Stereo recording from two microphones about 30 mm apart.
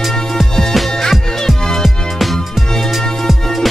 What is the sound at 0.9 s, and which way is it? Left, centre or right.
Music, centre.